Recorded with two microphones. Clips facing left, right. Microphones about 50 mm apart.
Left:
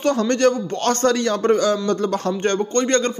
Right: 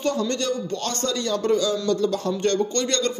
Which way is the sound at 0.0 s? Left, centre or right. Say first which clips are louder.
Left 7 dB; left.